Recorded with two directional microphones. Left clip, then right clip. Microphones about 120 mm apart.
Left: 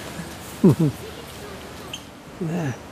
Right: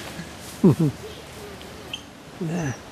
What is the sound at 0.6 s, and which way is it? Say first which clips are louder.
Speech: left 1 dB; 20° right (ahead or behind).